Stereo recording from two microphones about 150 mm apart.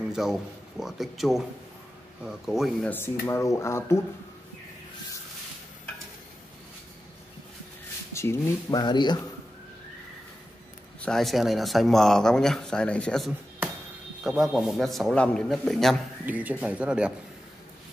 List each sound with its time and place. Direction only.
0.0 s speech: 5° right (ahead or behind)
2.9 s speech: 15° left (ahead or behind)
8.1 s speech: 15° left (ahead or behind)
11.0 s speech: 5° left (ahead or behind)
16.3 s speech: 10° right (ahead or behind)